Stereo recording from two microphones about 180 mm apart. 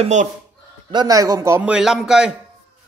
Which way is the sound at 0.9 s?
20° right (ahead or behind).